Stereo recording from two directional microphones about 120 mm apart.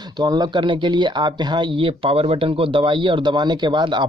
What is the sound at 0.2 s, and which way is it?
Speech, 35° right (ahead or behind).